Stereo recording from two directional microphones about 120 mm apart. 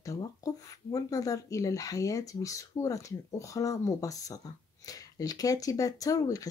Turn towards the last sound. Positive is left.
turn(degrees=30)  # may be behind; listen again after turning